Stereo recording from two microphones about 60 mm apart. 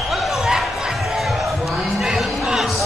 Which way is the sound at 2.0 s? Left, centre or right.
Centre.